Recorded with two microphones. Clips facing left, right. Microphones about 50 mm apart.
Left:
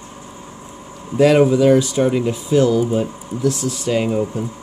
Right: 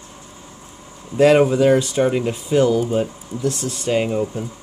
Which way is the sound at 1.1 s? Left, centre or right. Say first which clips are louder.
Left 1 dB; centre.